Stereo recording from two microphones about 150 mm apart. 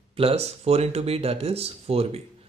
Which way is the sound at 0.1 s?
40° right (ahead or behind).